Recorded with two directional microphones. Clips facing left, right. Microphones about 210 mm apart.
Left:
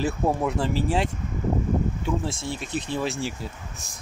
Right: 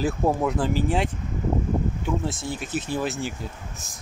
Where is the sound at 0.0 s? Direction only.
Centre (ahead or behind).